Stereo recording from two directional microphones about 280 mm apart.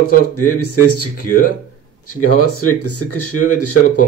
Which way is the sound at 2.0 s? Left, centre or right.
Left.